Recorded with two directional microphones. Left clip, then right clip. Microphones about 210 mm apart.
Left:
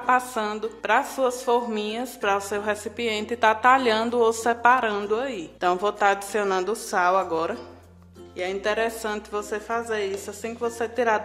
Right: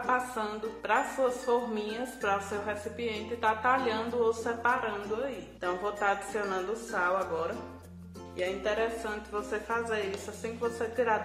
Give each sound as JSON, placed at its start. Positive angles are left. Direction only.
{"t": 0.0, "sound": "a woman's voice", "side_deg": 40}